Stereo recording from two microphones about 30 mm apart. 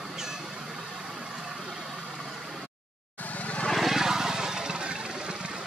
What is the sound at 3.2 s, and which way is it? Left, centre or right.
Vehicle, left.